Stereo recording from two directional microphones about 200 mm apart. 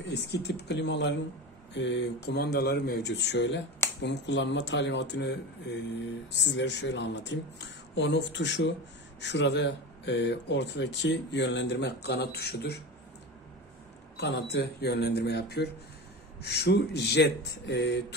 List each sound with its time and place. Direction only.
0.0 s speech: 55° left (ahead or behind)
14.1 s speech: 60° left (ahead or behind)